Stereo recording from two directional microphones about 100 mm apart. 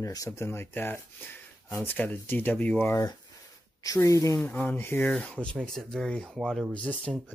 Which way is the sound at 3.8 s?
35° left (ahead or behind).